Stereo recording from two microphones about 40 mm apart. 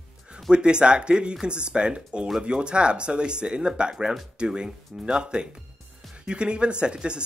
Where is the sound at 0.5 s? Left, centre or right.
Right.